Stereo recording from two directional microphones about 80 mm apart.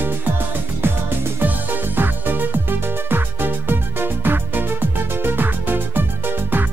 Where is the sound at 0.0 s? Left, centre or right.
Right.